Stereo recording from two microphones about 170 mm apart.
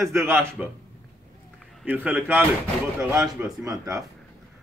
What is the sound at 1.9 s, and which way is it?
Speech, 10° right (ahead or behind).